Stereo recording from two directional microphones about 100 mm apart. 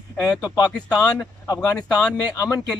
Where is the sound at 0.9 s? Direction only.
40° left (ahead or behind).